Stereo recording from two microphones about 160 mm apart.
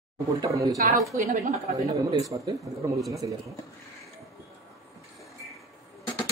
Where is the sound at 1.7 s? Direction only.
20° right (ahead or behind).